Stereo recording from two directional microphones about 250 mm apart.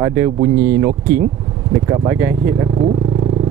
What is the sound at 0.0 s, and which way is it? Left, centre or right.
Speech, centre.